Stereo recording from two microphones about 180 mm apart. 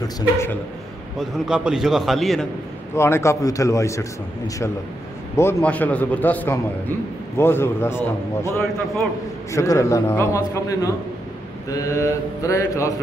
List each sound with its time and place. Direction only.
1.1 s a man's voice: 5° right (ahead or behind)
2.9 s a man's voice: 15° left (ahead or behind)
5.3 s a man's voice: 15° left (ahead or behind)